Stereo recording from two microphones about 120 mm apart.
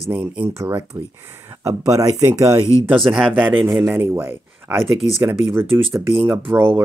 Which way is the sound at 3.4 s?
15° right (ahead or behind).